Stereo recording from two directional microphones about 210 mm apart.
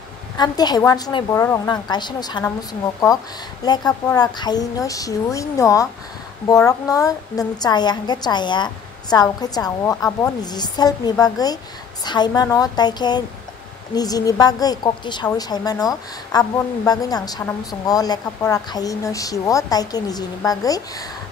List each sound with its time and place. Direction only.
0.4 s a woman's voice: 20° left (ahead or behind)
3.6 s a woman's voice: 20° left (ahead or behind)